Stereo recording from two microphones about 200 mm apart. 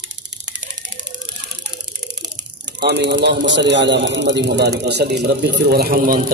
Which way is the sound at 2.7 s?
60° right (ahead or behind).